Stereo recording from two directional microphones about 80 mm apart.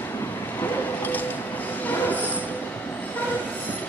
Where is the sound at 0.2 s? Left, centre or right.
Left.